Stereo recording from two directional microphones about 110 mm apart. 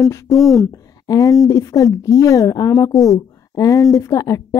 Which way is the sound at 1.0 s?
30° left (ahead or behind).